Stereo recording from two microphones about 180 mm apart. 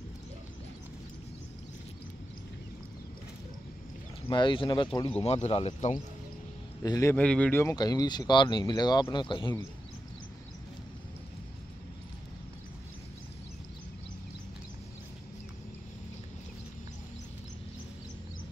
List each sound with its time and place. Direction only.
4.3 s speech: 25° left (ahead or behind)
6.8 s speech: 20° left (ahead or behind)